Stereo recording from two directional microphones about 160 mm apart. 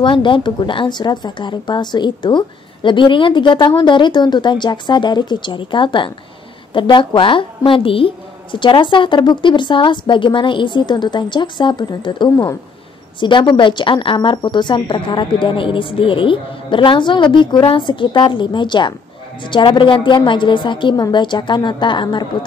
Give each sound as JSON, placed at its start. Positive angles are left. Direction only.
{"t": 0.0, "sound": "a woman's voice", "side_deg": 30}